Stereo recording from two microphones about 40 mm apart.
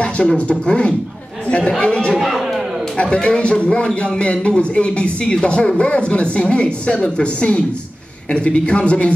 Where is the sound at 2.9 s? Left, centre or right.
Left.